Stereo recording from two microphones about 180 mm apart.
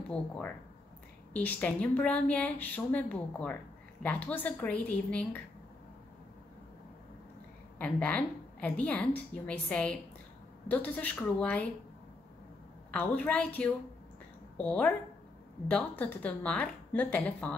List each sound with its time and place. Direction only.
1.3 s a woman's voice: 10° left (ahead or behind)
7.8 s a woman's voice: 5° left (ahead or behind)
12.9 s a woman's voice: 10° left (ahead or behind)